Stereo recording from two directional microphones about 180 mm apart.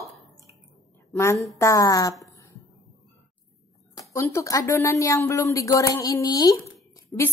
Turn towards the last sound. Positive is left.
turn(degrees=20)  # may be behind; listen again after turning